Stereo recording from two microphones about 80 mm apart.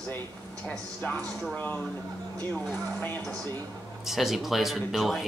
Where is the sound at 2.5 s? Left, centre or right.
Centre.